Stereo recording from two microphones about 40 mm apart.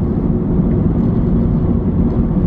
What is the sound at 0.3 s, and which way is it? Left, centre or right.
Vehicle, centre.